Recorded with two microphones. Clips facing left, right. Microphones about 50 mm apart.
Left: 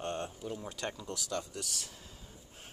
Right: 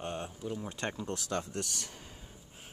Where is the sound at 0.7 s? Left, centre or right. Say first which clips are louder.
Right 3 dB; right.